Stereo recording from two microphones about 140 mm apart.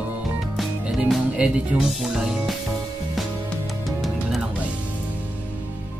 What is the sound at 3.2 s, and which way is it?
Music, centre (ahead or behind).